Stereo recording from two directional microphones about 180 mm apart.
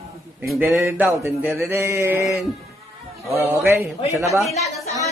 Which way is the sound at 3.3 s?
15° right (ahead or behind).